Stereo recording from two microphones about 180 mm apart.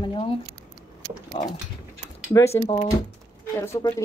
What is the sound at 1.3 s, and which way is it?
Speech, 30° left (ahead or behind).